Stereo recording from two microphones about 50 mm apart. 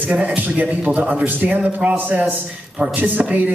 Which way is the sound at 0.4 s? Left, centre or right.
Right.